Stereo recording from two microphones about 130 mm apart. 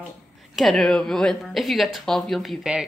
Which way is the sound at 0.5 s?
Centre (ahead or behind).